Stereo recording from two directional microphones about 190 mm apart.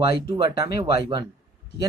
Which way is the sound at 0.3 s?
20° right (ahead or behind).